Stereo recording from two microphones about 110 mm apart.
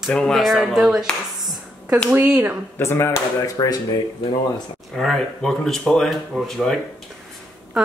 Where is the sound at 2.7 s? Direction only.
20° left (ahead or behind).